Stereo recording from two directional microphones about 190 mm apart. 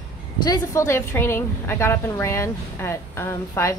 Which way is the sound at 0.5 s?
15° left (ahead or behind).